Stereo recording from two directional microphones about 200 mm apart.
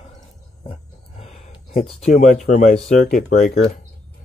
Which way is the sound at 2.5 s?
40° left (ahead or behind).